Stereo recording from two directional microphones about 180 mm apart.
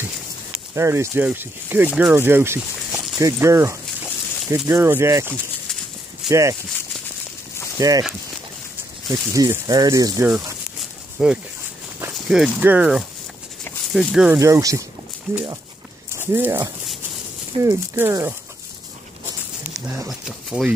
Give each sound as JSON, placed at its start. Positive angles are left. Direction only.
{"t": 0.7, "sound": "speech", "side_deg": -15}
{"t": 6.2, "sound": "speech", "side_deg": 0}
{"t": 7.8, "sound": "speech", "side_deg": -20}
{"t": 9.3, "sound": "speech", "side_deg": -20}
{"t": 10.3, "sound": "a sound", "side_deg": -5}
{"t": 12.3, "sound": "speech", "side_deg": -5}
{"t": 14.4, "sound": "speech", "side_deg": -15}
{"t": 20.1, "sound": "speech", "side_deg": 0}